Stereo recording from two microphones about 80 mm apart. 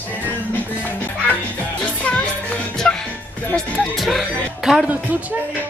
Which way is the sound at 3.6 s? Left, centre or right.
Centre.